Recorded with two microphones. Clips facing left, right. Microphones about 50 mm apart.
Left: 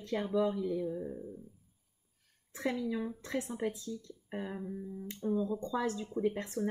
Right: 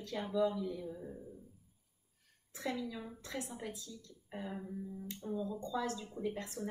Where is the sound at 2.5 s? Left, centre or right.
Left.